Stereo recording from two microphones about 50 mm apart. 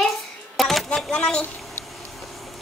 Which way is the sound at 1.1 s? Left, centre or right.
Centre.